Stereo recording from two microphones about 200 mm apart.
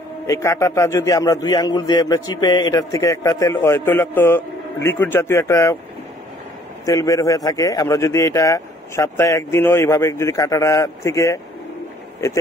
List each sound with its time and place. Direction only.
0.3 s speech: 15° left (ahead or behind)
6.9 s speech: 15° left (ahead or behind)